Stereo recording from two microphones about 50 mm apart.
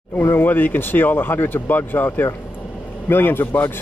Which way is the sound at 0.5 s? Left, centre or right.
Left.